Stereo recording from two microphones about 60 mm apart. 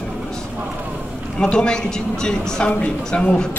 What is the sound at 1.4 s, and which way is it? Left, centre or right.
A man's voice, centre.